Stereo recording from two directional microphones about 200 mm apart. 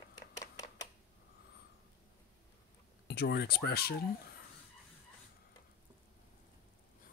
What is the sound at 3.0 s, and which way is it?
Speech, 55° left (ahead or behind).